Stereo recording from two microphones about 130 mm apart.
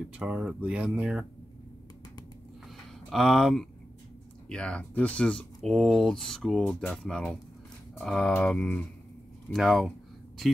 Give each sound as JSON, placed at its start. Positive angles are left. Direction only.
{"t": 0.2, "sound": "speech", "side_deg": -5}
{"t": 3.1, "sound": "speech", "side_deg": 0}